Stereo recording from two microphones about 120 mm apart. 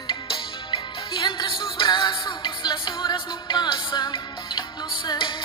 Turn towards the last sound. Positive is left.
turn(degrees=40)  # may be behind; listen again after turning